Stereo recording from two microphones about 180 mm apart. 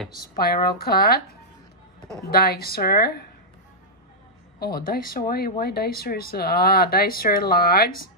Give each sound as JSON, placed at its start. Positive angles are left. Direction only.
{"t": 0.2, "sound": "speech", "side_deg": 60}
{"t": 2.3, "sound": "speech", "side_deg": 60}
{"t": 4.6, "sound": "speech", "side_deg": 55}